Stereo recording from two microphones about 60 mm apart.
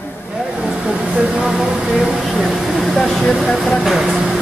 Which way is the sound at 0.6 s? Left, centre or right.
Centre.